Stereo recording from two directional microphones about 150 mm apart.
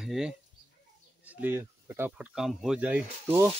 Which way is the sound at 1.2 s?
15° right (ahead or behind).